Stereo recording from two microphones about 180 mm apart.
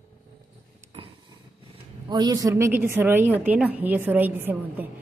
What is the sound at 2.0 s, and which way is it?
A woman's voice, 20° right (ahead or behind).